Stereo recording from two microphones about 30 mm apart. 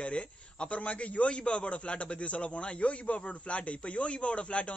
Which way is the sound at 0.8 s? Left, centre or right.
Left.